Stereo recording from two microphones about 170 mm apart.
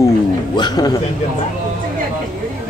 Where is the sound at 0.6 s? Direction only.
25° left (ahead or behind).